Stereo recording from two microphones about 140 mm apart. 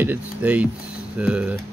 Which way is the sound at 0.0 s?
10° right (ahead or behind).